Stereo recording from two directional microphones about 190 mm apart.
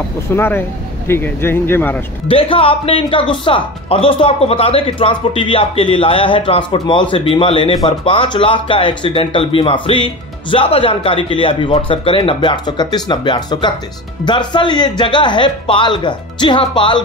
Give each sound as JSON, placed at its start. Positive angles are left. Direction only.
{"t": 0.3, "sound": "speech", "side_deg": 10}
{"t": 2.2, "sound": "speech", "side_deg": 30}